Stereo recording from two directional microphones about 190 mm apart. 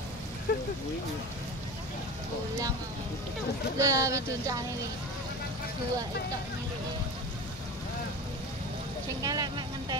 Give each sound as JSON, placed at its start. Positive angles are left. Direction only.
{"t": 0.5, "sound": "speech", "side_deg": 45}
{"t": 3.7, "sound": "speech", "side_deg": -15}
{"t": 9.2, "sound": "speech", "side_deg": -20}